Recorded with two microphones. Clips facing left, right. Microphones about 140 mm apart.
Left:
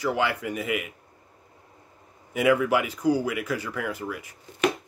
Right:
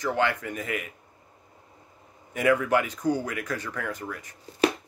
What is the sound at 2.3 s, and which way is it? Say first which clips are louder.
Speech: left 1 dB; 10° left (ahead or behind).